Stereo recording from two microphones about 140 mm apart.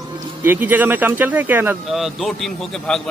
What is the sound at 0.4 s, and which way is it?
Speech, 15° right (ahead or behind).